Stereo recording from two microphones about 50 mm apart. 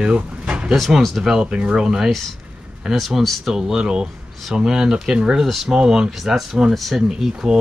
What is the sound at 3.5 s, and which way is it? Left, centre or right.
Speech, centre.